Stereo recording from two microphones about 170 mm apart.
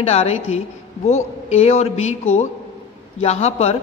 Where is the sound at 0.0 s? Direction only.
40° left (ahead or behind).